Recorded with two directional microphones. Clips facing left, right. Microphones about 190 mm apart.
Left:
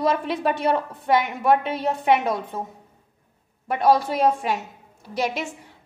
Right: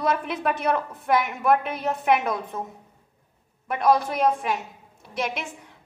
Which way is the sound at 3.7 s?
30° left (ahead or behind).